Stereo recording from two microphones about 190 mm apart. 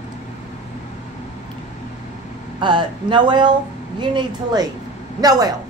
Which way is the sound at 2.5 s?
25° right (ahead or behind).